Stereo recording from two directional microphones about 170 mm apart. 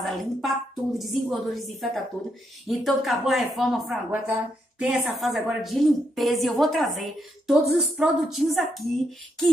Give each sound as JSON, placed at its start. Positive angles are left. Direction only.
{"t": 0.0, "sound": "a woman's voice", "side_deg": 0}